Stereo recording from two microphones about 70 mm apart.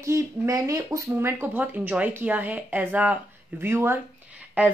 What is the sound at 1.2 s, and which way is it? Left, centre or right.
A woman's voice, right.